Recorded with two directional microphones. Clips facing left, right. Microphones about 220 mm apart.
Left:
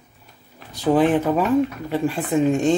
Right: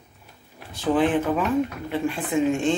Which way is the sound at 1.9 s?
40° left (ahead or behind).